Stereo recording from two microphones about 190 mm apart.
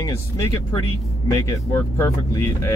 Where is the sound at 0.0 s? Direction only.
20° left (ahead or behind).